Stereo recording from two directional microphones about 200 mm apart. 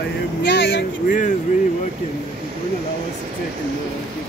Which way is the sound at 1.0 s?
40° left (ahead or behind).